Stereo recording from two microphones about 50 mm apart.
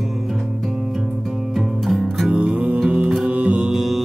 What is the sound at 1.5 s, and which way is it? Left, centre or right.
Music, centre.